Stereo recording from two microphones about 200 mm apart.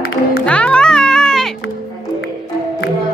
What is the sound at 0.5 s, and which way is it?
Music, 5° left (ahead or behind).